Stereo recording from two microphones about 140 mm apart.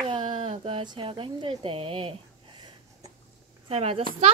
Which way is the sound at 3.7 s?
45° right (ahead or behind).